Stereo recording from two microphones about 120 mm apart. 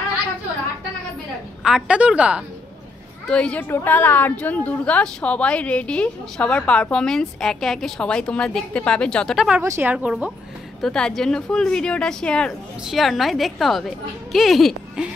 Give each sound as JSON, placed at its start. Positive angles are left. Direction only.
{"t": 1.6, "sound": "a woman's voice", "side_deg": -10}
{"t": 3.3, "sound": "a woman's voice", "side_deg": 10}
{"t": 9.6, "sound": "speech", "side_deg": -20}
{"t": 9.9, "sound": "a woman's voice", "side_deg": -10}
{"t": 10.8, "sound": "a woman's voice", "side_deg": 5}